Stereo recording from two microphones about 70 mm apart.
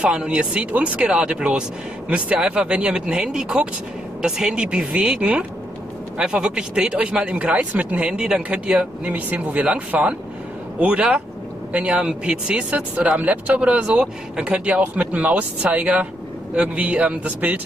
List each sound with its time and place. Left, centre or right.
0.0 s speech: centre